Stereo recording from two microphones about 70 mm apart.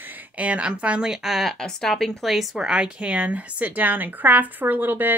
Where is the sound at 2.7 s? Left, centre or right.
Centre.